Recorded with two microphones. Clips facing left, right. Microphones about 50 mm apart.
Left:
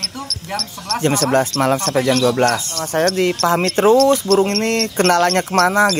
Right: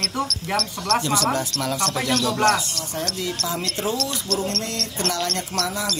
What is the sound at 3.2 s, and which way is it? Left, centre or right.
Speech, left.